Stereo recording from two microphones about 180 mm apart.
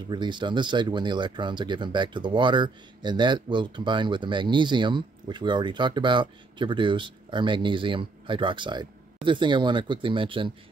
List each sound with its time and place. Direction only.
0.1 s speech: 25° right (ahead or behind)